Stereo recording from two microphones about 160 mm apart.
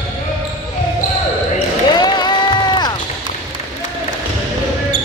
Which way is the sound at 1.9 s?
25° left (ahead or behind).